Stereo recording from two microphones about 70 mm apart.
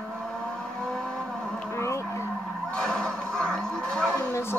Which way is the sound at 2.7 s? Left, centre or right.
Centre.